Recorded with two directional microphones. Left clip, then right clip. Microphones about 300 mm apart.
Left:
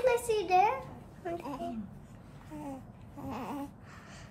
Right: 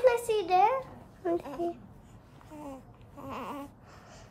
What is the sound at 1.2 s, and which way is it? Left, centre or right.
Speech, right.